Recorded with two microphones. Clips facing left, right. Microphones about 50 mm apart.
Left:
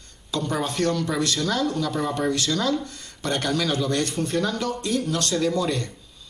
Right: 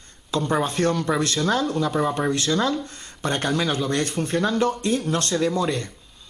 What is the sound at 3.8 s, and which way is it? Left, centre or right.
Speech, right.